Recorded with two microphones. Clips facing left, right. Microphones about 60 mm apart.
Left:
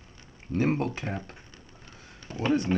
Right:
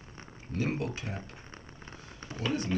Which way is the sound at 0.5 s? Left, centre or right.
Left.